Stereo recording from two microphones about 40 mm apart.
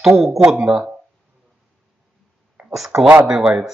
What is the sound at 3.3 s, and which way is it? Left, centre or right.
Speech, right.